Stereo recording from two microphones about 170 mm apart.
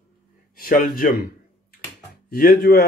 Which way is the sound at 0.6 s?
55° left (ahead or behind).